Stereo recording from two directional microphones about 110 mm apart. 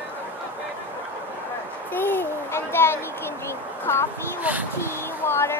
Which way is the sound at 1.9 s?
20° left (ahead or behind).